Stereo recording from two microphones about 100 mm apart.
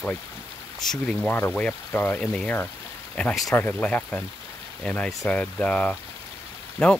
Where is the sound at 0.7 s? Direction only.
5° left (ahead or behind).